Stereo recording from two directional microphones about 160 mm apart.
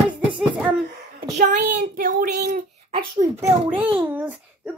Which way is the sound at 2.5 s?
55° right (ahead or behind).